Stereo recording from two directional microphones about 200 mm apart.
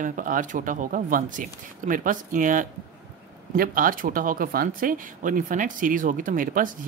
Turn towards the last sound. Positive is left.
turn(degrees=-40)  # may be behind; listen again after turning